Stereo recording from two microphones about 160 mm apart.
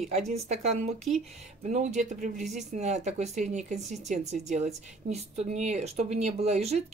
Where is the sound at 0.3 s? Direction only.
40° right (ahead or behind).